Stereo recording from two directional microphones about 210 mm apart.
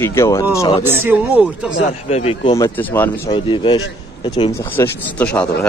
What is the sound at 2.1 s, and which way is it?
Speech, 30° left (ahead or behind).